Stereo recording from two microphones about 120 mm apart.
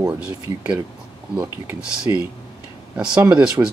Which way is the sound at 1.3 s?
15° right (ahead or behind).